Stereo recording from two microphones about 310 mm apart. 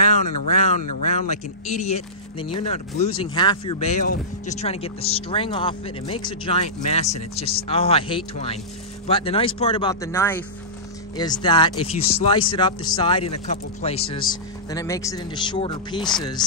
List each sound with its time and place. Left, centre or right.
0.1 s speech: left